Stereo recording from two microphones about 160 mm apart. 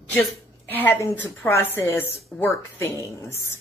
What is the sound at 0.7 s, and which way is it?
A woman's voice, 10° left (ahead or behind).